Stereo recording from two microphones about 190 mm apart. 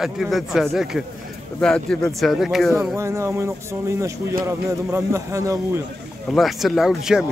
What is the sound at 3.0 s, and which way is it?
Speech, 15° right (ahead or behind).